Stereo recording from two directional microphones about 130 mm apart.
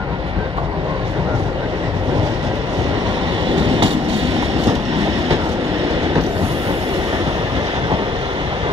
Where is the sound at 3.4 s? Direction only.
40° right (ahead or behind).